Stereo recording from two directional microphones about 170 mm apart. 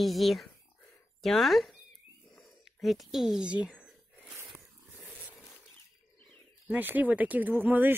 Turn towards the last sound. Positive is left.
turn(degrees=-10)  # may be behind; listen again after turning